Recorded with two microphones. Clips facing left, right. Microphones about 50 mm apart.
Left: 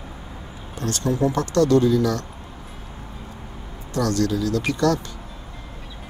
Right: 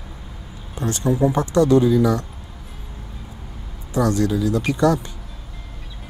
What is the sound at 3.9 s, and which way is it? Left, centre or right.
Speech, centre.